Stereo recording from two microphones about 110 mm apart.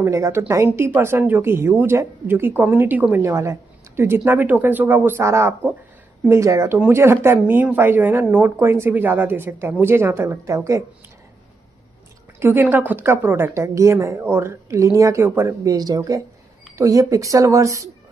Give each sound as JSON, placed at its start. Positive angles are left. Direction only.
{"t": 0.0, "sound": "speech", "side_deg": -25}
{"t": 12.4, "sound": "speech", "side_deg": -20}